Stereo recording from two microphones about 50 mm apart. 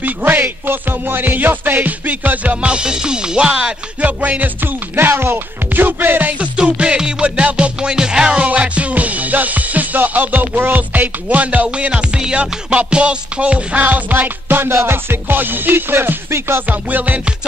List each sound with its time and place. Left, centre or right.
0.0 s music: right; by 3.7 s centre
4.0 s music: right
4.9 s music: right
6.6 s music: centre
8.5 s music: right
16.6 s music: right